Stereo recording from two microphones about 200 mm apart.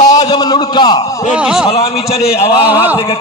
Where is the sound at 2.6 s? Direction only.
10° right (ahead or behind).